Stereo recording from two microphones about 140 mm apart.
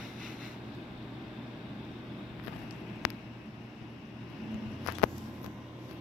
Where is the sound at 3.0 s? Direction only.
Centre (ahead or behind).